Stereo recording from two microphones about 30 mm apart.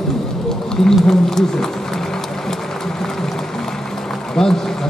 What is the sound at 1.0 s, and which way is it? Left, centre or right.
Speech, centre.